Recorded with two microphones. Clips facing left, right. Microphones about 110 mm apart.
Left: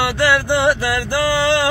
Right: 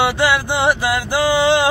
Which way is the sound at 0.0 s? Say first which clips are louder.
Even; 15° right (ahead or behind).